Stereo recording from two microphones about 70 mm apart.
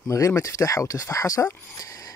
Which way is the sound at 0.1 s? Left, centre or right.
Left.